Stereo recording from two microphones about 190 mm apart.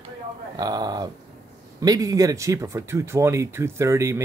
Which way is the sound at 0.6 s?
20° right (ahead or behind).